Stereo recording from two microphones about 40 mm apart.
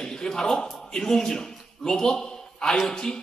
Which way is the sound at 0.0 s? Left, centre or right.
Centre.